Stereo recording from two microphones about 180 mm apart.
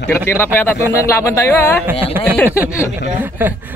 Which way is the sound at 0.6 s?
15° left (ahead or behind).